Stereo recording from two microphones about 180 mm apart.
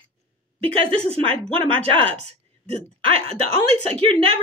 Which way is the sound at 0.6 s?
30° right (ahead or behind).